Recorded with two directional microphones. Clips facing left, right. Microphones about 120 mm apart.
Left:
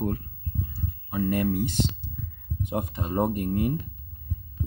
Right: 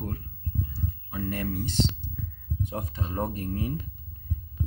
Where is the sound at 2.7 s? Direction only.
20° left (ahead or behind).